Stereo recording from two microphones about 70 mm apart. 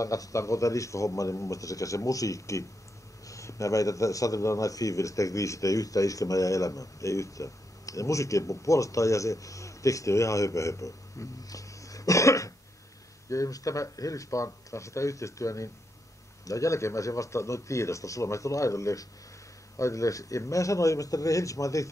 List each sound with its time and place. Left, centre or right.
0.0 s speech: left